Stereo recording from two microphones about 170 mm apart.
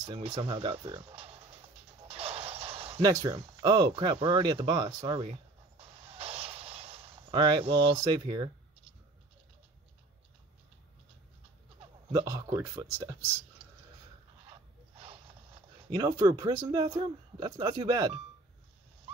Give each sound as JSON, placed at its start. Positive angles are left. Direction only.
{"t": 0.0, "sound": "speech", "side_deg": -25}
{"t": 2.0, "sound": "a sound", "side_deg": -35}
{"t": 3.0, "sound": "speech", "side_deg": -20}
{"t": 5.2, "sound": "a sound", "side_deg": -35}
{"t": 7.9, "sound": "speech", "side_deg": -25}
{"t": 12.1, "sound": "speech", "side_deg": -20}
{"t": 15.9, "sound": "speech", "side_deg": -25}